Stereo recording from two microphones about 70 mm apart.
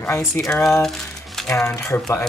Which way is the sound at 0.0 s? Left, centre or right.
Left.